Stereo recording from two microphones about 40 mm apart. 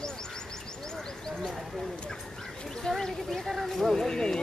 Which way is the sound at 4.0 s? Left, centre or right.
Centre.